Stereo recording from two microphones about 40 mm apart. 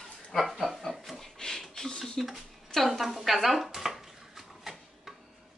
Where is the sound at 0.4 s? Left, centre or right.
Centre.